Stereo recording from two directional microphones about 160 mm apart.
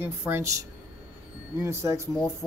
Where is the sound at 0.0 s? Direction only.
15° right (ahead or behind).